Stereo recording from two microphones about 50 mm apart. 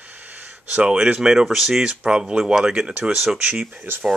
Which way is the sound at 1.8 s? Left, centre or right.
Centre.